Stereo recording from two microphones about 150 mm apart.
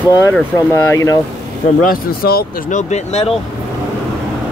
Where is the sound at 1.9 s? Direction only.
85° left.